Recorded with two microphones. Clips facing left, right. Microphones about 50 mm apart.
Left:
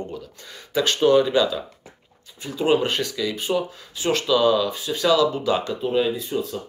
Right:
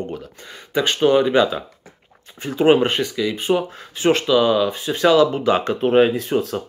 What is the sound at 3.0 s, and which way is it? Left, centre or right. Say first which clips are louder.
Speech: right 4 dB; centre.